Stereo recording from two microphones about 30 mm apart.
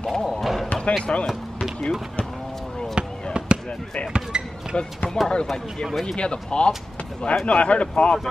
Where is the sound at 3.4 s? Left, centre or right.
Right.